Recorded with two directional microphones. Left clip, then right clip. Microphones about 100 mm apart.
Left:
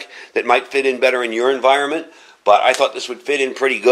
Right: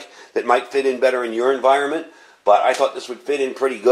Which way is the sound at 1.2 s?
15° left (ahead or behind).